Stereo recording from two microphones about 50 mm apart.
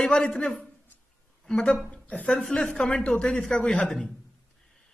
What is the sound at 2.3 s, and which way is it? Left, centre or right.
Speech, centre.